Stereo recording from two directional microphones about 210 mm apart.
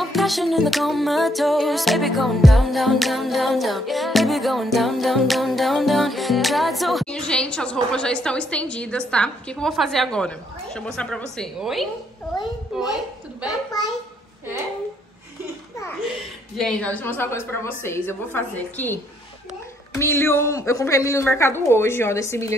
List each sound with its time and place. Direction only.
0.0 s music: centre (ahead or behind)
13.7 s a woman's voice: 15° left (ahead or behind)
16.5 s a woman's voice: 5° left (ahead or behind)